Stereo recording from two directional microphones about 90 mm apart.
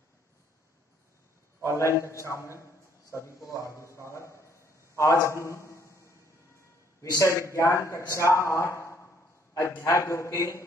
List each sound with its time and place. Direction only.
1.8 s a man's voice: 35° left (ahead or behind)
4.9 s a sound: 35° left (ahead or behind)
7.0 s a man's voice: 30° left (ahead or behind)